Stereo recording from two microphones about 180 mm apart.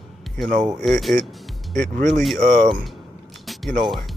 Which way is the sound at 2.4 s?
40° right (ahead or behind).